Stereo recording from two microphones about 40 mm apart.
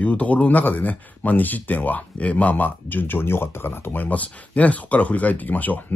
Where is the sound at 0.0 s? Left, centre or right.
Left.